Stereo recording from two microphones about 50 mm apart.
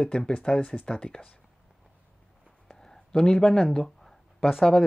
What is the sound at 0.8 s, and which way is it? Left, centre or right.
Speech, centre.